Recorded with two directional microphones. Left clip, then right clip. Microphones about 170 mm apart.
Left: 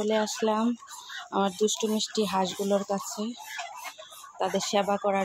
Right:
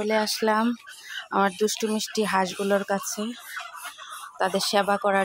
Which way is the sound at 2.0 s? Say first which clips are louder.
Right 2 dB; 35° right (ahead or behind).